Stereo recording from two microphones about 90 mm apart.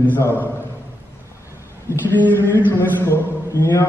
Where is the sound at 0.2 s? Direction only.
25° left (ahead or behind).